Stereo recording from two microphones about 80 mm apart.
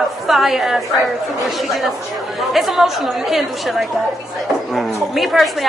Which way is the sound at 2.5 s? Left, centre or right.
Centre.